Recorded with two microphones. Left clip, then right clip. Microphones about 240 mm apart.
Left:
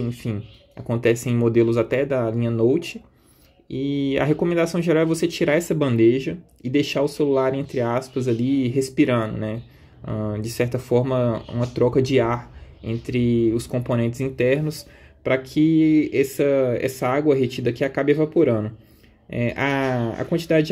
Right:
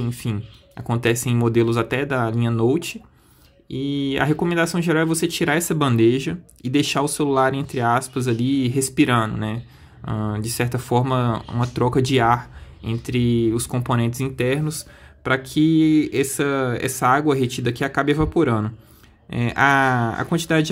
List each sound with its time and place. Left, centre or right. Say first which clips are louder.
0.0 s speech: even; centre